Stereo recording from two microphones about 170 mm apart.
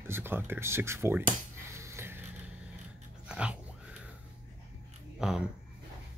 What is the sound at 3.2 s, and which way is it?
Dog, 5° right (ahead or behind).